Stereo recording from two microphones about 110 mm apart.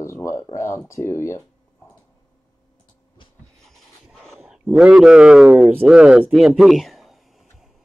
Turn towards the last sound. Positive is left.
turn(degrees=0)  # may be behind; listen again after turning